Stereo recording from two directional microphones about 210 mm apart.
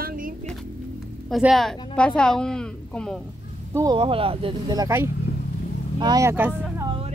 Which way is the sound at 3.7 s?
15° right (ahead or behind).